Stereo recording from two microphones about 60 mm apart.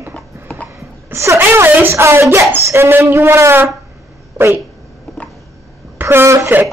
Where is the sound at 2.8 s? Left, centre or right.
Right.